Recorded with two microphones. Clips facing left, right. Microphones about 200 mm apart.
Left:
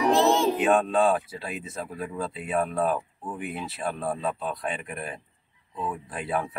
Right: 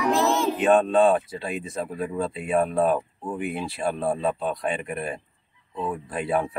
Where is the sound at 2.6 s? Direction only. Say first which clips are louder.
Right 3 dB; 25° right (ahead or behind).